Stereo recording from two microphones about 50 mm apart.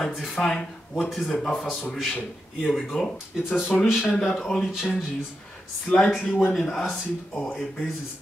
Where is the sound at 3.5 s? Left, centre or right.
Centre.